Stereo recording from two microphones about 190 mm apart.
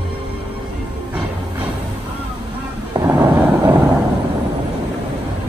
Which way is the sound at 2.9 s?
20° right (ahead or behind).